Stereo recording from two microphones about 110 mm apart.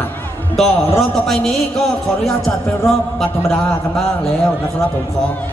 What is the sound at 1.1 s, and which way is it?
A man's voice, 5° left (ahead or behind).